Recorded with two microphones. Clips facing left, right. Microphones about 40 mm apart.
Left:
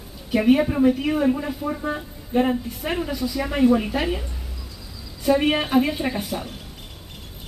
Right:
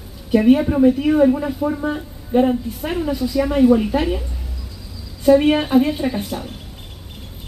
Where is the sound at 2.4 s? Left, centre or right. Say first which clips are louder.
Right 4 dB; left.